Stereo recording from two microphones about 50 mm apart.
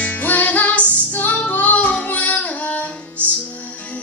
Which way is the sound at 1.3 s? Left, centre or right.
Left.